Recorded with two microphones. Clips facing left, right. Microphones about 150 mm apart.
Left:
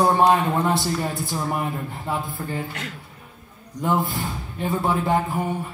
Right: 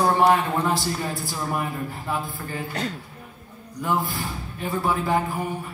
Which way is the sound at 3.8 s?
25° left (ahead or behind).